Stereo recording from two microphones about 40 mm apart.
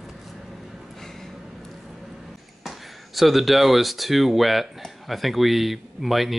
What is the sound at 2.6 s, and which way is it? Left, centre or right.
Speech, centre.